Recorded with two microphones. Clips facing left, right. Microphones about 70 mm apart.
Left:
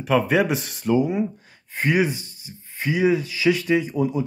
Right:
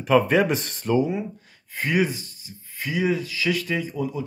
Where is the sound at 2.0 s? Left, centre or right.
Centre.